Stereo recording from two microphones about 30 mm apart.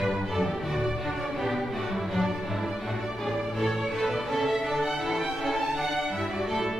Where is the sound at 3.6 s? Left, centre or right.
Centre.